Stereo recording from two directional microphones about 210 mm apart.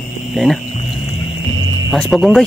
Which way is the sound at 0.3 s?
Centre (ahead or behind).